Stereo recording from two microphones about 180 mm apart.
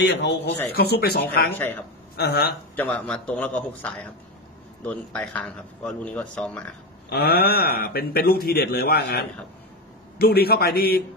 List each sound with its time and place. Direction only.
0.0 s speech: 70° left (ahead or behind)
1.6 s a man's voice: 10° left (ahead or behind)
2.1 s speech: 60° left (ahead or behind)
2.7 s a man's voice: 5° left (ahead or behind)
7.1 s speech: 60° left (ahead or behind)